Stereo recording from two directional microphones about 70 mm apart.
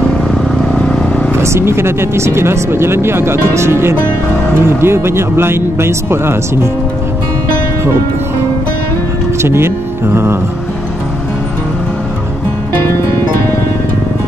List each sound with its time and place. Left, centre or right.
0.3 s vehicle: centre
1.4 s speech: right
9.4 s speech: right